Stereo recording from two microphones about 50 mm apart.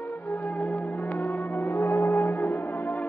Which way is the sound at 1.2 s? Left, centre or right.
Left.